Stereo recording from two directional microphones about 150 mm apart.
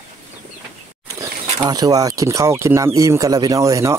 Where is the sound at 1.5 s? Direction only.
25° right (ahead or behind).